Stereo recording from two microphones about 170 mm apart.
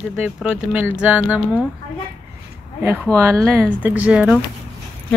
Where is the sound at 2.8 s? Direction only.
10° right (ahead or behind).